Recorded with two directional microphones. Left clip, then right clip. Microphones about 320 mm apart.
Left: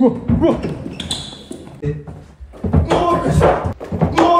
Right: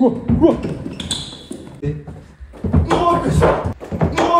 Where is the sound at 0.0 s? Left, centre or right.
Left.